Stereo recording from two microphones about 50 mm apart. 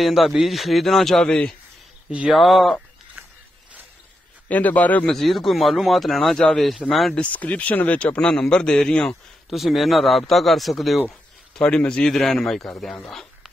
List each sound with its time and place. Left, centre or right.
0.0 s a man's voice: centre
2.0 s speech: centre
2.3 s a man's voice: centre
3.2 s a sound: right
4.5 s a man's voice: left
5.1 s a man's voice: centre
6.3 s a man's voice: centre
6.9 s a man's voice: centre
7.2 s speech: left
8.3 s a man's voice: centre
9.5 s a man's voice: centre
11.5 s a man's voice: centre